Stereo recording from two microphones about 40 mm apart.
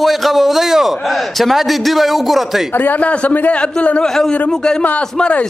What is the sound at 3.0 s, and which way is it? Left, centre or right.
A man's voice, left.